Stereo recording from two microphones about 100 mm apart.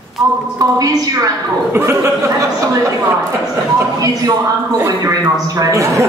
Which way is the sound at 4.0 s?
35° right (ahead or behind).